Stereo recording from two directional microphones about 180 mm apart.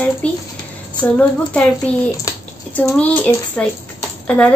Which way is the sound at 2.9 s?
10° left (ahead or behind).